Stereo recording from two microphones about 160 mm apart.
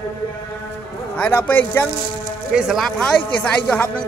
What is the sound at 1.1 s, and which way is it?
Speech, 10° left (ahead or behind).